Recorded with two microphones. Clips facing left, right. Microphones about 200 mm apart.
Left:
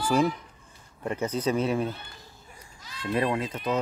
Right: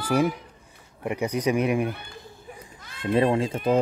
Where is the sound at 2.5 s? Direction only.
55° right (ahead or behind).